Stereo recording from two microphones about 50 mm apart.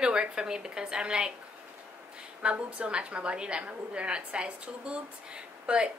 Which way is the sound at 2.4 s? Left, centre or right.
Right.